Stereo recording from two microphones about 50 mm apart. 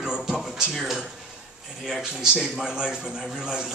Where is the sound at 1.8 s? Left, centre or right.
Centre.